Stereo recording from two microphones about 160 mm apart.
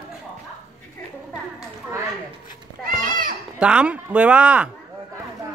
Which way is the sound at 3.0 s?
60° right (ahead or behind).